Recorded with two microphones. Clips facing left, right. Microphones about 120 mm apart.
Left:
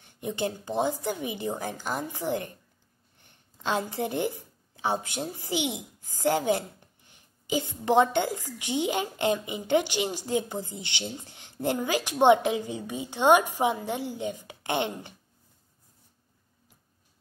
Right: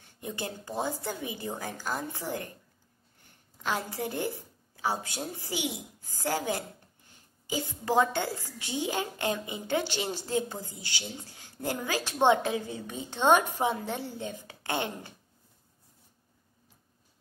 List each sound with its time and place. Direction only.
0.2 s a woman's voice: 20° left (ahead or behind)